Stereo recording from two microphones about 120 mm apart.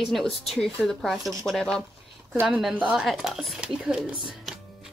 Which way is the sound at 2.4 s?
10° right (ahead or behind).